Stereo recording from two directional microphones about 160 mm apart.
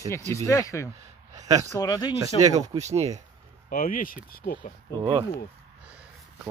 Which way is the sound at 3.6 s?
60° left (ahead or behind).